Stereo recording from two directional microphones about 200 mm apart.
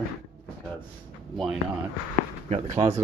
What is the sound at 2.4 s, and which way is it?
Speech, 35° right (ahead or behind).